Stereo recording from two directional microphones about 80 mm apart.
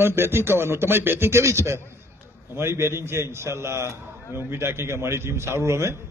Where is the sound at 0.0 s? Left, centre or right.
Right.